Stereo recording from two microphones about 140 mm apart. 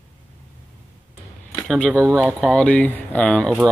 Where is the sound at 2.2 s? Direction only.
10° left (ahead or behind).